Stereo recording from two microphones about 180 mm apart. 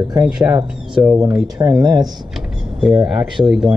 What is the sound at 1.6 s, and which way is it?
Speech, 20° right (ahead or behind).